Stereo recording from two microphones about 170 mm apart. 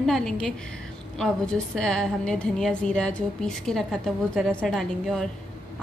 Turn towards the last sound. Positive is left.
turn(degrees=5)  # may be behind; listen again after turning